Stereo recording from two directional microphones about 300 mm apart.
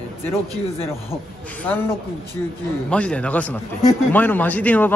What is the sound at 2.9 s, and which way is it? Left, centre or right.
A man's voice, centre.